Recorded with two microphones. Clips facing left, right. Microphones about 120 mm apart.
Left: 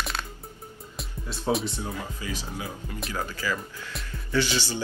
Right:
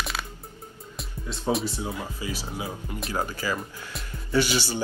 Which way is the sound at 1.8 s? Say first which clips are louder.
Right 2 dB; 15° right (ahead or behind).